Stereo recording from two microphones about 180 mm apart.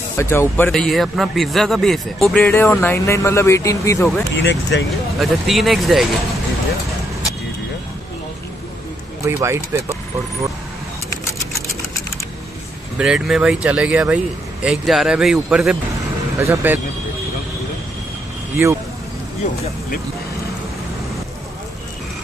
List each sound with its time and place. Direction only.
0.2 s speech: 15° left (ahead or behind)
0.7 s speech: centre (ahead or behind)
4.4 s speech: 75° left (ahead or behind)
5.2 s speech: centre (ahead or behind)
9.2 s speech: 15° right (ahead or behind)
12.9 s speech: 5° right (ahead or behind)